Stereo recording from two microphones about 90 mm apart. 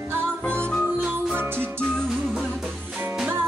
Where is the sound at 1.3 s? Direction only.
25° right (ahead or behind).